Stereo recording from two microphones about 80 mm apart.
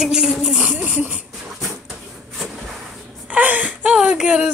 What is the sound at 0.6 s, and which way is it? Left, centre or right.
Speech, centre.